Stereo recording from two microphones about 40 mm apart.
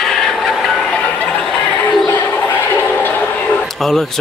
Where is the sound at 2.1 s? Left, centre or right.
Left.